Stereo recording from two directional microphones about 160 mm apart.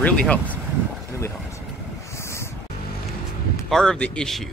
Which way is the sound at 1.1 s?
15° left (ahead or behind).